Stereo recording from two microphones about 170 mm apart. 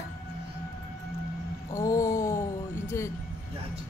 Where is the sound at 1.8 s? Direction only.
20° left (ahead or behind).